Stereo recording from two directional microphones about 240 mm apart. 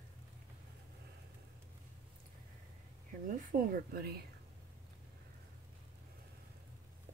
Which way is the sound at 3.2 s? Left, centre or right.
Right.